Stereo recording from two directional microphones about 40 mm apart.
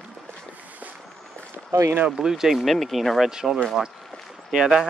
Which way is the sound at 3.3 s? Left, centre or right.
Centre.